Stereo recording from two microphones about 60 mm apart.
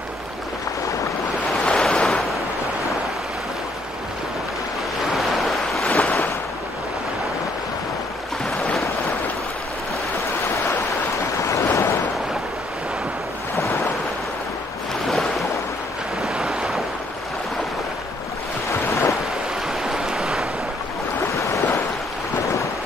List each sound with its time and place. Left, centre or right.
1.6 s waves: centre
5.1 s waves: centre
5.9 s waves: left
11.4 s waves: left
16.4 s waves: centre
18.7 s waves: left
19.8 s a sound: centre